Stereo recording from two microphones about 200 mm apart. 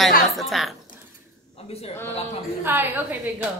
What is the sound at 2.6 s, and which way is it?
Speech, 10° right (ahead or behind).